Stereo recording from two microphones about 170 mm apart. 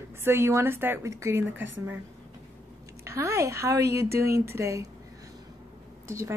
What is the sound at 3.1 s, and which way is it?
A woman's voice, 15° right (ahead or behind).